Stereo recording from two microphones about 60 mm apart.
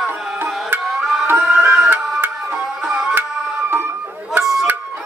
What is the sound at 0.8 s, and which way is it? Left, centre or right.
Tabla, centre.